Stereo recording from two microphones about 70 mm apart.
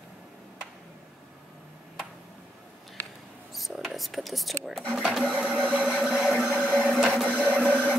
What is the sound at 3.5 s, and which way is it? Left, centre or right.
A woman's voice, centre.